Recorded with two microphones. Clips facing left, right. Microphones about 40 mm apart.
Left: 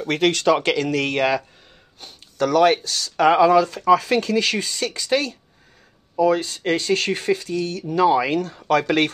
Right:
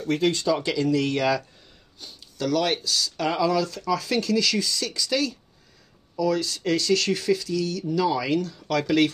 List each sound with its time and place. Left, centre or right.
0.1 s speech: left